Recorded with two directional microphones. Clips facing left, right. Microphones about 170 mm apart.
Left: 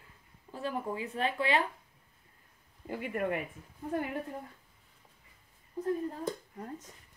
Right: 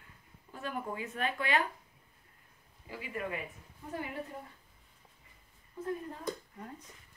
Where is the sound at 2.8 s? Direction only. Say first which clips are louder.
Left 6 dB; 55° left (ahead or behind).